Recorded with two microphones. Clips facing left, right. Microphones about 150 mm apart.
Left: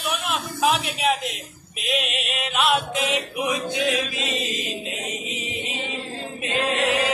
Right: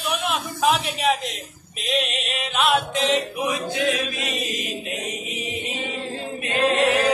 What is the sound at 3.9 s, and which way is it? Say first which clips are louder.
Chant: left 1 dB; 20° left (ahead or behind).